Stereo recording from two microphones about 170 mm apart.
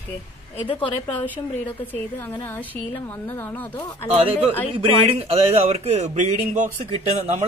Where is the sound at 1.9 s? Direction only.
15° left (ahead or behind).